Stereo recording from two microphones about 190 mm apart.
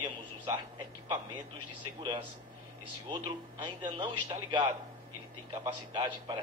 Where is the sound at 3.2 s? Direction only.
25° right (ahead or behind).